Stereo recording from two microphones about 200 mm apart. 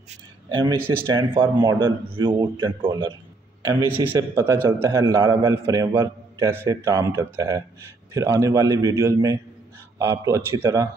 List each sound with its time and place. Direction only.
0.1 s a sound: 25° right (ahead or behind)
0.8 s speech: 20° right (ahead or behind)
3.6 s a man's voice: 15° right (ahead or behind)